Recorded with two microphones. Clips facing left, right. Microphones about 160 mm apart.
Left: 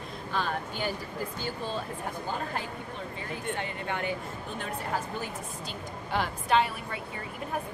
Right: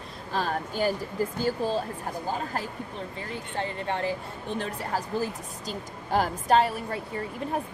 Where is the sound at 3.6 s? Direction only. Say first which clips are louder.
Right 4 dB; 30° right (ahead or behind).